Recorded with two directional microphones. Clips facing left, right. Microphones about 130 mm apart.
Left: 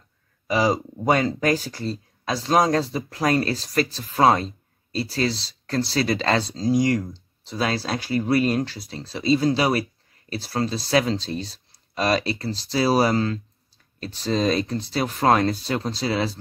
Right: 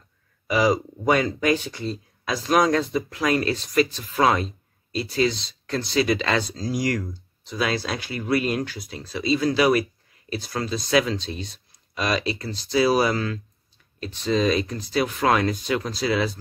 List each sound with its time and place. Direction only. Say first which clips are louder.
0.5 s speech: right 1 dB; 30° left (ahead or behind)